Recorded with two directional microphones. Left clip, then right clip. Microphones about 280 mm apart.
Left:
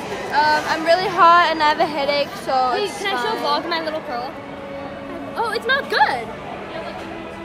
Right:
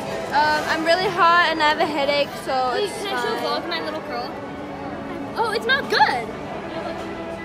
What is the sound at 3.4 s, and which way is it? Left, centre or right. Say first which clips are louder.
Speech: left 4 dB; left.